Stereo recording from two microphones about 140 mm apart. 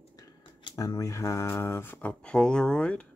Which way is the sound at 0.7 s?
25° left (ahead or behind).